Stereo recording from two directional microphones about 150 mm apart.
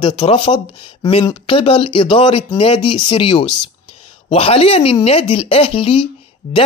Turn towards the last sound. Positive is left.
turn(degrees=35)  # may be behind; listen again after turning